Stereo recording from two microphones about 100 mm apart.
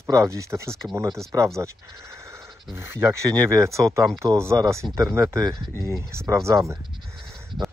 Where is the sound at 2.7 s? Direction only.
25° right (ahead or behind).